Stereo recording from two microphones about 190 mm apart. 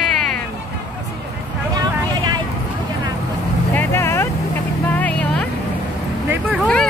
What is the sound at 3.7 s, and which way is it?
Vehicle, 10° left (ahead or behind).